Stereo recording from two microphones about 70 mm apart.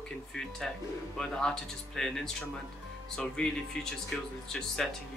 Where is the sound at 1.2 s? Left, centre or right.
Centre.